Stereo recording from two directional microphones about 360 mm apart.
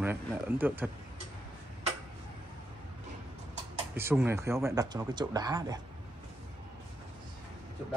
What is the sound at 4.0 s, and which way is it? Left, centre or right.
Speech, centre.